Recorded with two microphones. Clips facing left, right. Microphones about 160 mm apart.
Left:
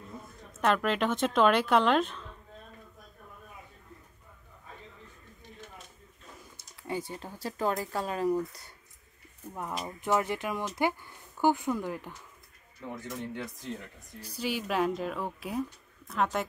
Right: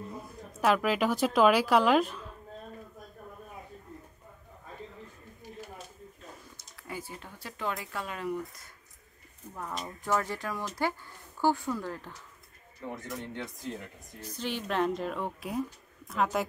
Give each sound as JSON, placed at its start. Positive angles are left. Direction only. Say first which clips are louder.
{"t": 0.6, "sound": "speech", "louder": "right 1 dB", "side_deg": -5}
{"t": 6.8, "sound": "speech", "louder": "left 6 dB", "side_deg": 25}
{"t": 9.8, "sound": "speech", "louder": "left 2 dB", "side_deg": 20}
{"t": 12.8, "sound": "speech", "louder": "even", "side_deg": 0}